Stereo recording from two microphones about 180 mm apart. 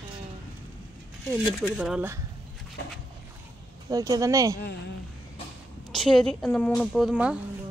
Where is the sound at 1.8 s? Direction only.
10° right (ahead or behind).